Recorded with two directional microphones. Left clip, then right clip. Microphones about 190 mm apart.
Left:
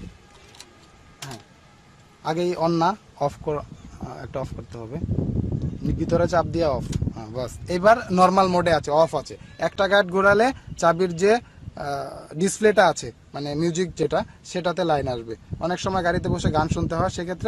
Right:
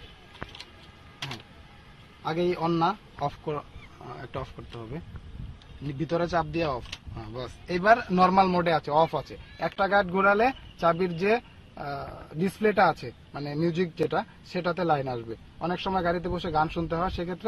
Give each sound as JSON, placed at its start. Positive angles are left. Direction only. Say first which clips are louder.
{"t": 2.2, "sound": "speech", "louder": "left 4 dB", "side_deg": 75}
{"t": 5.9, "sound": "speech", "louder": "left 6 dB", "side_deg": 75}